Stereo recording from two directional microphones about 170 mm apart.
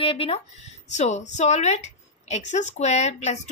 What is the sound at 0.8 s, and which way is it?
A woman's voice, 45° left (ahead or behind).